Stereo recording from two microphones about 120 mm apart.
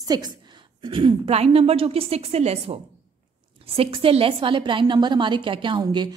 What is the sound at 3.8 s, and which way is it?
A woman's voice, 55° right (ahead or behind).